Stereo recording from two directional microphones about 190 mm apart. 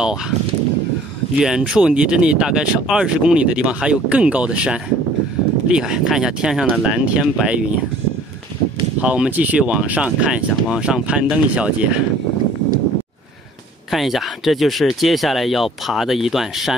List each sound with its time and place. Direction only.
1.4 s speech: 5° right (ahead or behind)
9.0 s speech: 5° right (ahead or behind)
13.8 s speech: centre (ahead or behind)